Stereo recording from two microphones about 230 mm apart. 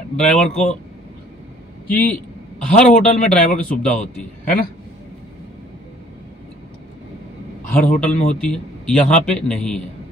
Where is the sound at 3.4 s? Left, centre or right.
Left.